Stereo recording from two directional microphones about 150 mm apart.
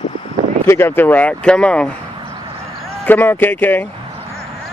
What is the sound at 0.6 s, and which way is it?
Speech, 15° left (ahead or behind).